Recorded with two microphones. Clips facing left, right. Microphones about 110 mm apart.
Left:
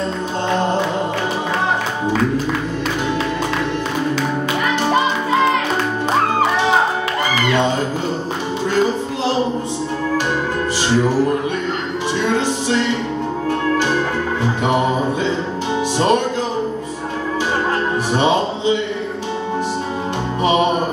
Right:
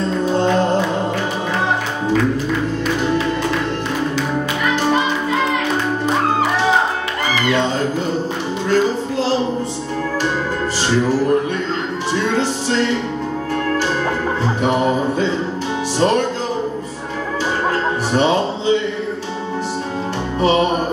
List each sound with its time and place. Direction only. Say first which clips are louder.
14.4 s music: even; 15° left (ahead or behind)
18.1 s music: right 1 dB; 20° left (ahead or behind)